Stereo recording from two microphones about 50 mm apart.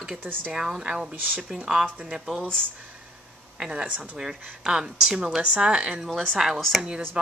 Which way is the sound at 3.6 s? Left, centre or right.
Centre.